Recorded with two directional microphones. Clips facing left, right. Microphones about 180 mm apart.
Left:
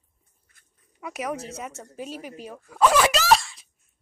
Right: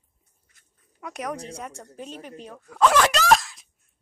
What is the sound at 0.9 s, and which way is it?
Speech, 5° left (ahead or behind).